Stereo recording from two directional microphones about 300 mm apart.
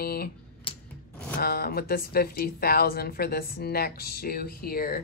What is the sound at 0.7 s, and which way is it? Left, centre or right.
Rub, centre.